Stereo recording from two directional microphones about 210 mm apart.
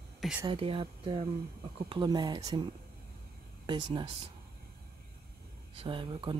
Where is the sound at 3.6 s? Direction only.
20° right (ahead or behind).